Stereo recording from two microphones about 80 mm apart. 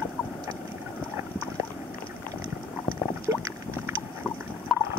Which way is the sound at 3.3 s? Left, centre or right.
Right.